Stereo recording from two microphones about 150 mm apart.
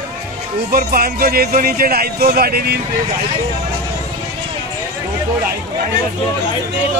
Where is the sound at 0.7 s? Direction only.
75° right (ahead or behind); by 2.8 s 90° right.